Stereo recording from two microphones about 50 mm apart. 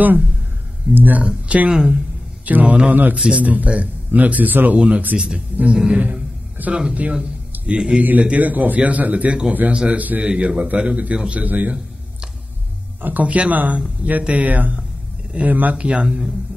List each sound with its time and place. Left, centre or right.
0.9 s speech: right
1.2 s speech: right
2.4 s a man's voice: right
3.2 s speech: right
4.7 s speech: right
5.9 s a sound: right
6.9 s a man's voice: right
10.2 s speech: centre; by 11.7 s right
13.0 s a man's voice: right
15.8 s speech: right